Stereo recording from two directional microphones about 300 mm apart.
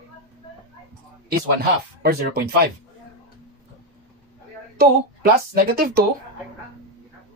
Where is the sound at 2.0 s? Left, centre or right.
Right.